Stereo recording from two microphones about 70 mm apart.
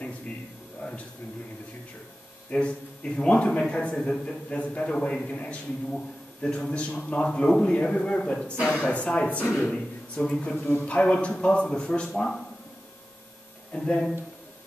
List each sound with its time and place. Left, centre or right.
2.5 s a man's voice: centre
13.7 s a man's voice: centre